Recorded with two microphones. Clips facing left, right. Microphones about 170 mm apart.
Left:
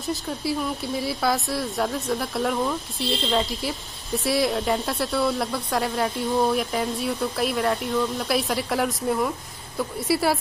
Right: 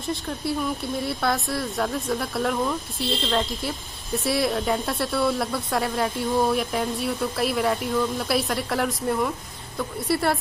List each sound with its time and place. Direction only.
0.1 s speech: centre (ahead or behind)